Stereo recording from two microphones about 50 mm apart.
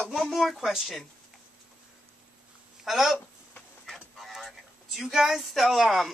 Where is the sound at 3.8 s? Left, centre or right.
Centre.